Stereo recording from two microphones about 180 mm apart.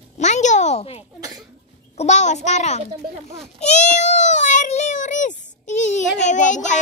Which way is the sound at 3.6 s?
40° left (ahead or behind).